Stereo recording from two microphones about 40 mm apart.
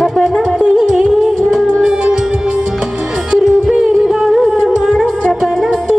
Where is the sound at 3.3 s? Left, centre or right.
Centre.